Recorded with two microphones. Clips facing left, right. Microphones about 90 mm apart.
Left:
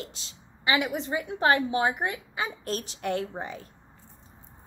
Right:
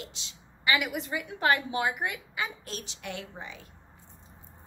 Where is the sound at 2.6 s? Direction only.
45° left (ahead or behind).